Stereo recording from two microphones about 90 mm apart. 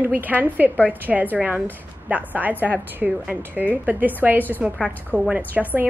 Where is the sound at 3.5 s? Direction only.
20° right (ahead or behind).